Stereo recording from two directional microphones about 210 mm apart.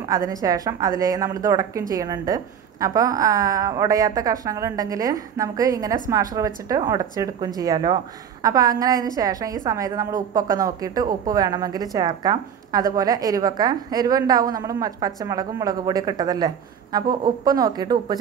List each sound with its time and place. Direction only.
0.1 s speech: 15° right (ahead or behind)